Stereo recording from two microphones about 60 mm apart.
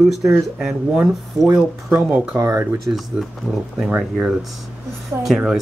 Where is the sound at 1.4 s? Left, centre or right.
Centre.